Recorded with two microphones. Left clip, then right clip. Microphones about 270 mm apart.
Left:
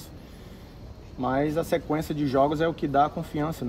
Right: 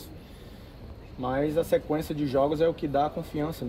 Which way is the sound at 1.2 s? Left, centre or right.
Centre.